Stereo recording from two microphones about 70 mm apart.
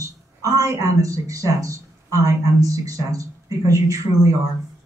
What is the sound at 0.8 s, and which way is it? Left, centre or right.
Speech, right.